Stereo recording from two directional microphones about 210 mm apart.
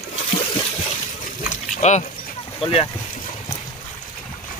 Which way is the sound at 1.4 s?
35° left (ahead or behind).